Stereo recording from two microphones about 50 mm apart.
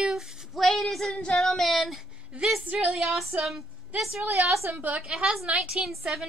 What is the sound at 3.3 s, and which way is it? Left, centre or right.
Speech, right.